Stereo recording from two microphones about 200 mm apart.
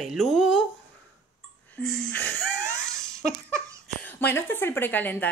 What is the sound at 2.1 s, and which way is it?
Wheeze, 10° left (ahead or behind).